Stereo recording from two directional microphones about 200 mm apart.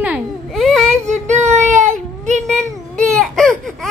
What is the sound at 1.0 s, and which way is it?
Whimper, 35° right (ahead or behind).